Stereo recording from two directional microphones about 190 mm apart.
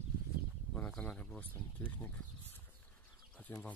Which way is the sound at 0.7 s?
5° left (ahead or behind).